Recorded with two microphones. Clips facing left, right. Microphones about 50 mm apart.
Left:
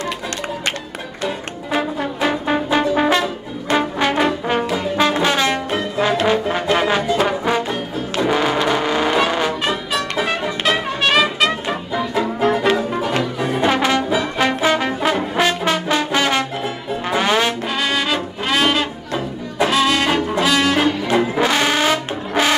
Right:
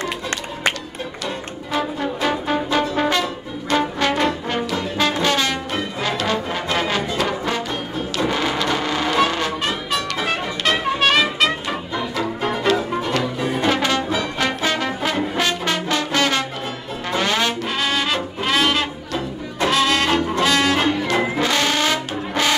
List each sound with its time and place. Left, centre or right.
1.2 s music: left
2.0 s brass instrument: centre
5.8 s trombone: centre
6.3 s brass instrument: centre
7.2 s music: centre
8.6 s vehicle: centre
9.7 s trumpet: centre
12.7 s brass instrument: centre
17.1 s music: centre
17.6 s music: centre
21.4 s music: centre